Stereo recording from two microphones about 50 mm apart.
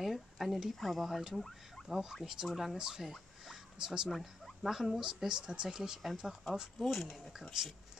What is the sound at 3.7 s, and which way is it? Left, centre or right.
Speech, centre.